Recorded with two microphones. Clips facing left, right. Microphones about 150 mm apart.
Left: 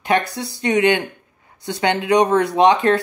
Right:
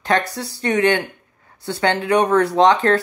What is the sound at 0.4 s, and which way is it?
Speech, 15° left (ahead or behind).